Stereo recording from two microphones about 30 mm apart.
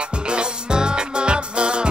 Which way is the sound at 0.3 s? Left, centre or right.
Right.